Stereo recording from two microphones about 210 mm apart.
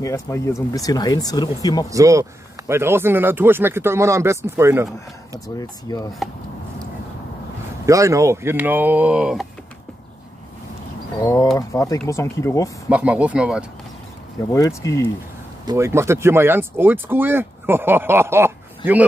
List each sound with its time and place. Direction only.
0.0 s speech: 15° left (ahead or behind)
1.9 s speech: 15° right (ahead or behind)
5.6 s speech: 20° left (ahead or behind)
7.8 s speech: 15° right (ahead or behind)
11.1 s speech: 15° left (ahead or behind)
12.9 s speech: 5° right (ahead or behind)
14.5 s speech: 15° left (ahead or behind)
15.6 s speech: 15° right (ahead or behind)